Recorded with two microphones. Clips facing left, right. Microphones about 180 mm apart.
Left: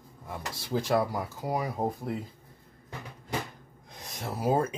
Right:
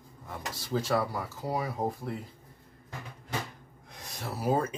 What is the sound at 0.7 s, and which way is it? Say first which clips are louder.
Speech: left 2 dB; 15° left (ahead or behind).